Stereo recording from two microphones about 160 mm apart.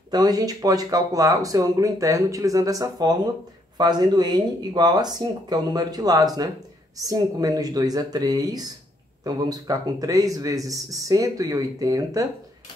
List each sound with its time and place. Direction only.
0.1 s speech: 25° right (ahead or behind)